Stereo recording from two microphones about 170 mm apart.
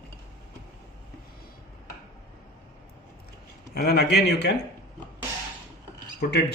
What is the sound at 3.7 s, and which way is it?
Speech, 70° left (ahead or behind).